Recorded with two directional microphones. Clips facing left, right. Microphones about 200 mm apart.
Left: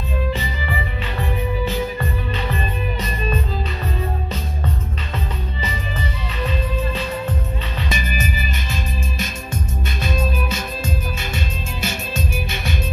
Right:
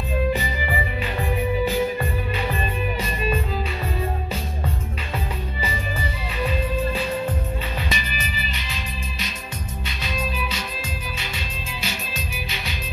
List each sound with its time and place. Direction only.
0.3 s music: 15° right (ahead or behind)
5.6 s music: 15° right (ahead or behind)
7.9 s music: 45° left (ahead or behind)
10.0 s music: 50° left (ahead or behind)